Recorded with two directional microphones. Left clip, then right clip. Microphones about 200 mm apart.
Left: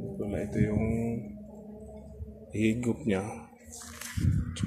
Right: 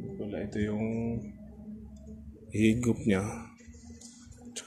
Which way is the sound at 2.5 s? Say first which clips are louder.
Right 2 dB; 20° right (ahead or behind).